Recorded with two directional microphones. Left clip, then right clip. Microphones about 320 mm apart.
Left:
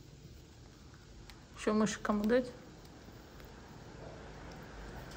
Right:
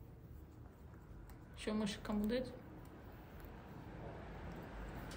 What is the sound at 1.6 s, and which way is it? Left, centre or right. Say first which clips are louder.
Speech: left 10 dB; centre.